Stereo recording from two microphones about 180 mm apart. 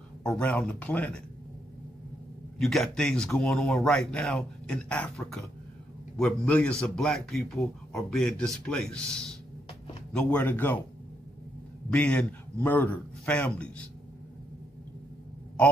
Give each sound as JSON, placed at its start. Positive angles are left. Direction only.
{"t": 0.2, "sound": "a man's voice", "side_deg": 5}
{"t": 2.6, "sound": "a man's voice", "side_deg": 0}
{"t": 11.9, "sound": "a man's voice", "side_deg": 10}